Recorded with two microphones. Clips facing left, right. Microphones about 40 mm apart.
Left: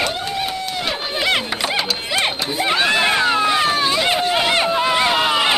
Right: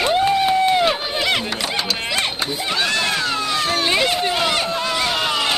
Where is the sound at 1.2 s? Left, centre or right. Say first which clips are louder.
Left 1 dB; centre.